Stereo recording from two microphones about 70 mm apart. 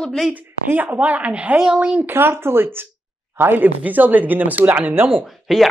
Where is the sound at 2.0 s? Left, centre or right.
Right.